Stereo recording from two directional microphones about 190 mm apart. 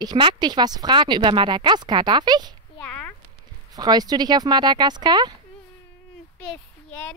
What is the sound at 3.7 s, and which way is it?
Speech, 20° right (ahead or behind).